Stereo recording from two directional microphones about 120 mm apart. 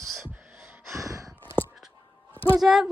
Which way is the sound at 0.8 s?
25° right (ahead or behind).